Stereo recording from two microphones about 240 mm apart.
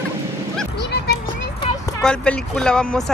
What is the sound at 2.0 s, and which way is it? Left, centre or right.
Speech, centre.